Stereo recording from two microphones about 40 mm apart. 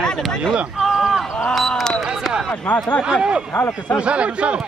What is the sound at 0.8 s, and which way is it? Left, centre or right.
Speech, centre.